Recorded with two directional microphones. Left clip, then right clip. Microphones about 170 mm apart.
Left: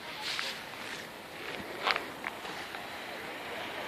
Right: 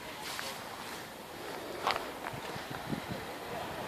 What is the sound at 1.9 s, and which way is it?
Walk, 5° right (ahead or behind).